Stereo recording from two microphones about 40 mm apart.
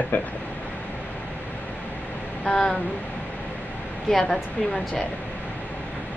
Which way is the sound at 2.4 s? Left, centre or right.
Left.